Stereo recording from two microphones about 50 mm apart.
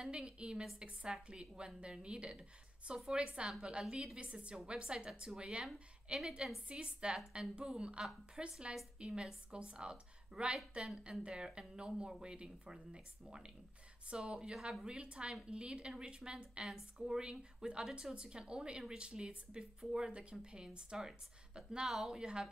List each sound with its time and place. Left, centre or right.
0.0 s a woman's voice: centre
14.0 s a woman's voice: right
14.5 s a woman's voice: centre